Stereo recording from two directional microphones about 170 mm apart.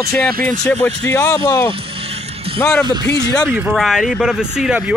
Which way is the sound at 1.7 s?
35° right (ahead or behind).